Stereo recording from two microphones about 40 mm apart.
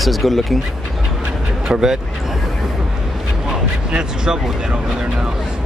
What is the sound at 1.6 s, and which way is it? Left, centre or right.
Speech, centre.